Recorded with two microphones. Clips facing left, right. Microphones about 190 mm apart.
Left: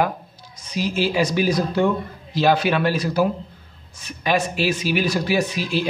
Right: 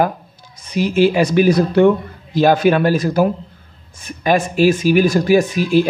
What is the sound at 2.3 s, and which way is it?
Speech, 50° right (ahead or behind).